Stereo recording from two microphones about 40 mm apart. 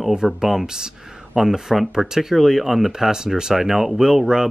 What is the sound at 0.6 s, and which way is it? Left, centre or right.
Speech, centre.